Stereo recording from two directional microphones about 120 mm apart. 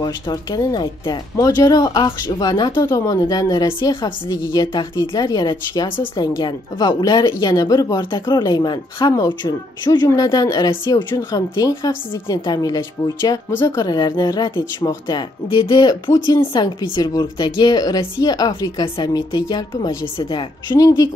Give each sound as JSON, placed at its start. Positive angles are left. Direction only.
{"t": 0.0, "sound": "a woman's voice", "side_deg": 30}